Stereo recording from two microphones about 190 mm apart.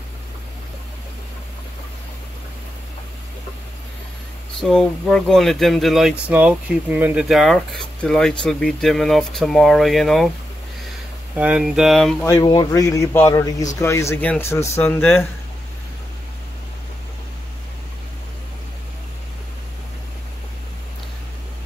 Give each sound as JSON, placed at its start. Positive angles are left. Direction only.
{"t": 4.6, "sound": "speech", "side_deg": 5}
{"t": 11.3, "sound": "speech", "side_deg": -5}
{"t": 12.3, "sound": "a man's voice", "side_deg": 20}